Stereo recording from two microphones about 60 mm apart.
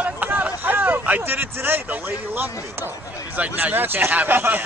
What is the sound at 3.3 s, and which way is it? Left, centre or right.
Speech, right.